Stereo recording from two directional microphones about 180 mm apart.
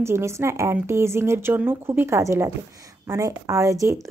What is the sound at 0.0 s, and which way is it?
Speech, 15° right (ahead or behind).